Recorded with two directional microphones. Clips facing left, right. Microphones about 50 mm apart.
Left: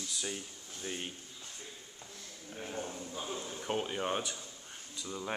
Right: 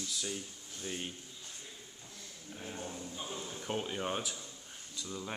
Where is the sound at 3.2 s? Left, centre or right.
Left.